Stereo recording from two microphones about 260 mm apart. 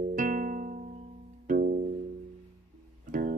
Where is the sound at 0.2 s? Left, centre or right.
Right.